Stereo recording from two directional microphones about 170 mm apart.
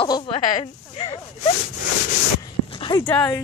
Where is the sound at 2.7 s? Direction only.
30° left (ahead or behind).